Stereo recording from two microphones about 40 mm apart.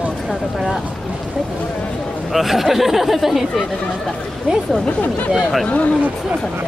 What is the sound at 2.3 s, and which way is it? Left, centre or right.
Speech, centre.